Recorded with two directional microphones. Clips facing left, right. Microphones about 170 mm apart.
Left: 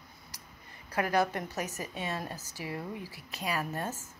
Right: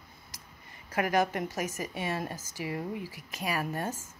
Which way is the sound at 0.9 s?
15° right (ahead or behind).